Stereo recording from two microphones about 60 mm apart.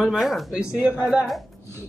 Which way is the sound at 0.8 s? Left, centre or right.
Right.